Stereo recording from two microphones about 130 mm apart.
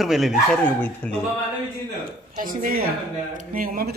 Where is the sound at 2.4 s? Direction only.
90° right.